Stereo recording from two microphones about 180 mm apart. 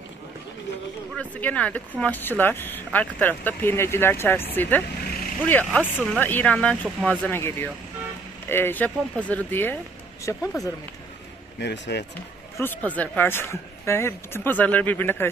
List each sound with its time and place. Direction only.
1.1 s speech: 10° left (ahead or behind)
11.6 s speech: 75° left (ahead or behind)
12.5 s speech: 10° left (ahead or behind)